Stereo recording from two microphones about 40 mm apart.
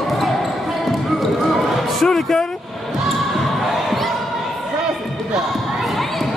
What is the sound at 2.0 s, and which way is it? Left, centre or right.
Speech, centre.